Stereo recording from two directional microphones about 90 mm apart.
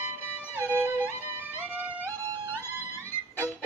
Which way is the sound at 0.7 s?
25° right (ahead or behind).